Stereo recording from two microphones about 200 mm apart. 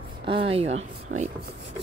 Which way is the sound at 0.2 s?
25° right (ahead or behind).